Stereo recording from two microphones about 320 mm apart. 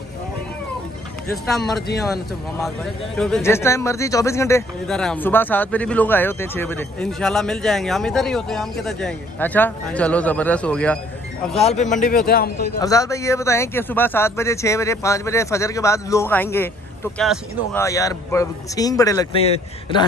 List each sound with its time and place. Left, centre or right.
2.6 s a man's voice: centre
11.6 s a man's voice: left
12.8 s speech: centre